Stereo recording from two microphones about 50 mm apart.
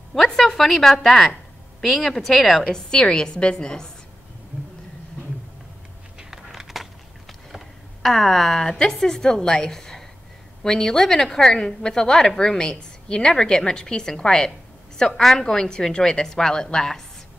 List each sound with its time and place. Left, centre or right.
0.1 s a woman's voice: centre
2.6 s a woman's voice: centre
6.1 s a sound: centre
10.6 s a woman's voice: centre